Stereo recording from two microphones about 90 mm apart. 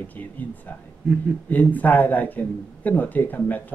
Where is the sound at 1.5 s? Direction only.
20° left (ahead or behind).